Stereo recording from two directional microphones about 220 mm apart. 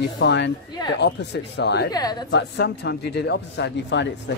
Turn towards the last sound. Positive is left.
turn(degrees=50)  # may be behind; listen again after turning